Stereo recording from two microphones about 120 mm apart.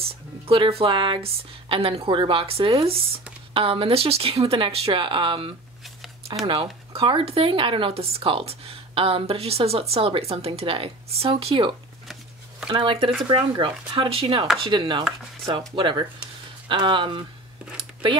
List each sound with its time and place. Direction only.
0.0 s speech: 50° right (ahead or behind)
14.6 s chopping: 40° right (ahead or behind)
15.7 s speech: 45° right (ahead or behind)